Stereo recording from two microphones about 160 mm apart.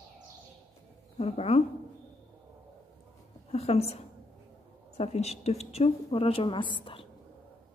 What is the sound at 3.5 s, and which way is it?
Speech, 40° left (ahead or behind).